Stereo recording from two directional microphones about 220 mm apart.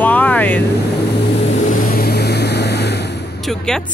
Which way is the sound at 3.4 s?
Centre (ahead or behind).